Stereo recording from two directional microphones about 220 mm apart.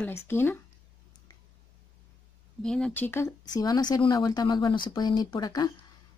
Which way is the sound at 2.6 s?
5° left (ahead or behind).